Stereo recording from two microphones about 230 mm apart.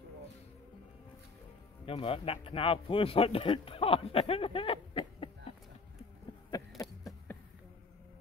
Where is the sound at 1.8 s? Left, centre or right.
Left.